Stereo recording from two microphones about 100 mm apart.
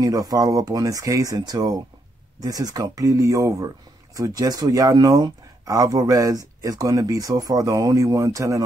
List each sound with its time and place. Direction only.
0.0 s speech: 40° right (ahead or behind)